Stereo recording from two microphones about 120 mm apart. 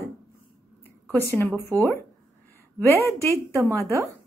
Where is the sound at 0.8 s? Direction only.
15° left (ahead or behind).